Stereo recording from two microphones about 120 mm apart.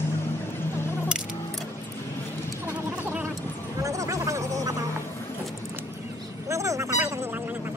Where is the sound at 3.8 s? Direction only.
25° right (ahead or behind).